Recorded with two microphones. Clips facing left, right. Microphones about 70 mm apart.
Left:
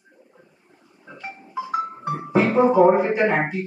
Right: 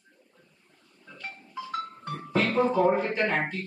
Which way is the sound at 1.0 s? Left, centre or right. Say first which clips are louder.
Left 5 dB; left.